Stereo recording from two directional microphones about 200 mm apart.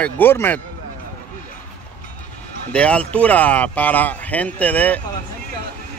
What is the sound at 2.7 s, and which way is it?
Speech, 5° left (ahead or behind).